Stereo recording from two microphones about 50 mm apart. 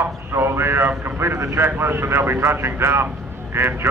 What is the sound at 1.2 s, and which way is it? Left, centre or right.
Speech, right.